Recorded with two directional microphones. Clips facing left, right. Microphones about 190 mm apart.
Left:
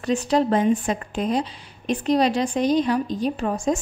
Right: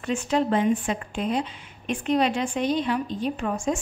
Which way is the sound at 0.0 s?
40° left (ahead or behind).